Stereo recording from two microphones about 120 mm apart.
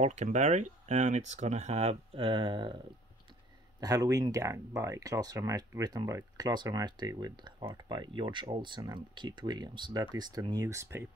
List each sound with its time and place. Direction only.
0.0 s speech: 75° right (ahead or behind); by 2.8 s 40° right (ahead or behind)
3.8 s speech: 30° right (ahead or behind)